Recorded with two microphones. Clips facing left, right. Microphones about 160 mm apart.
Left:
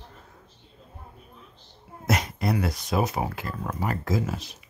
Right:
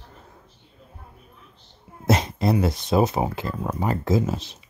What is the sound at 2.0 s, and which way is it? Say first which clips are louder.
Speech: right 5 dB; 25° right (ahead or behind).